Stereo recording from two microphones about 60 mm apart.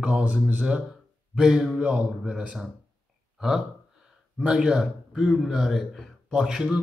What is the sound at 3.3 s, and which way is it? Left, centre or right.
Burping, centre.